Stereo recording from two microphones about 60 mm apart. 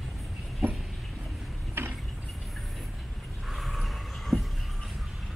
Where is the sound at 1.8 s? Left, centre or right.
Right.